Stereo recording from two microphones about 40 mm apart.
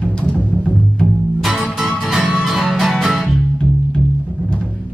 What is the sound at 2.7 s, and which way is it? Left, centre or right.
Music, centre.